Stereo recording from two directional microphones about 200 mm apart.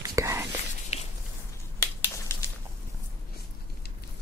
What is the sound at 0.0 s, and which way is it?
Whispering, 15° right (ahead or behind).